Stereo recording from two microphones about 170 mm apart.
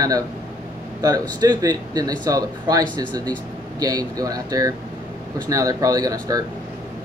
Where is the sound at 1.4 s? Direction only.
20° right (ahead or behind).